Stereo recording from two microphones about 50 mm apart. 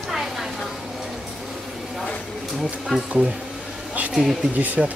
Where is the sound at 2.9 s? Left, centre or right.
Centre.